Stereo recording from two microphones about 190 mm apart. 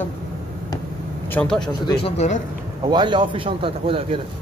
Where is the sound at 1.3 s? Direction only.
5° left (ahead or behind).